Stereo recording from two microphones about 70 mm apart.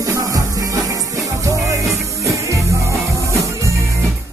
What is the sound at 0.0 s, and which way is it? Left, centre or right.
Music, right.